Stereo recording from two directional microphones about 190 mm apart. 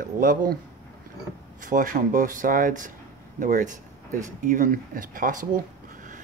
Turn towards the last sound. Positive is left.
turn(degrees=-45)  # may be behind; listen again after turning